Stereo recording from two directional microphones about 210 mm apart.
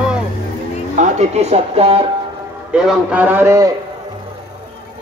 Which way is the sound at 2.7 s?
5° right (ahead or behind).